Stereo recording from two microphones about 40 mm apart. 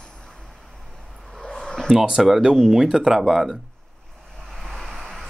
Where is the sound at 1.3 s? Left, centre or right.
Centre.